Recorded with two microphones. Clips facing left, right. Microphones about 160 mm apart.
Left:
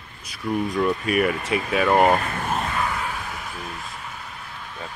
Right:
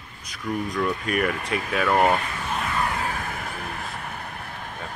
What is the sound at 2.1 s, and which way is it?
Speech, 45° left (ahead or behind).